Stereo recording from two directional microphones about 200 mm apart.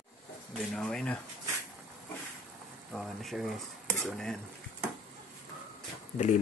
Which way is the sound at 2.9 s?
Centre (ahead or behind).